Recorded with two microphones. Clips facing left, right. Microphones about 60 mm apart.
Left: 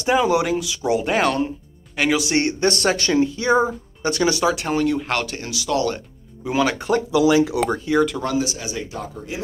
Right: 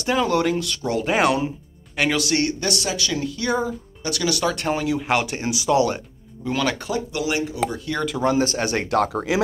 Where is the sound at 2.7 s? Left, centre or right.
Left.